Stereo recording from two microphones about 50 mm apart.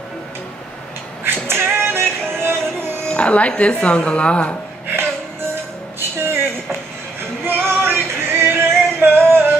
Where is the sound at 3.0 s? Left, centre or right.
Left.